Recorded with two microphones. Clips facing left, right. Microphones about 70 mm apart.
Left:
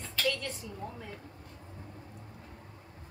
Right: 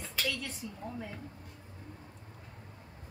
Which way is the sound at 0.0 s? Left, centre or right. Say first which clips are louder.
Left 4 dB; centre.